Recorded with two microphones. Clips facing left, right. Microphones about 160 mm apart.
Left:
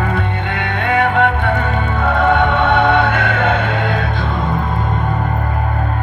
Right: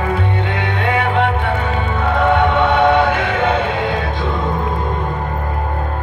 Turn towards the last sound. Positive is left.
turn(degrees=55)  # may be behind; listen again after turning